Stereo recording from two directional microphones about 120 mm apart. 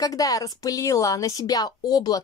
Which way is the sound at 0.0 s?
30° left (ahead or behind).